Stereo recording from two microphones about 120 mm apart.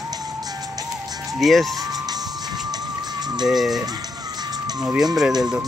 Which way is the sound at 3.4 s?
Centre (ahead or behind).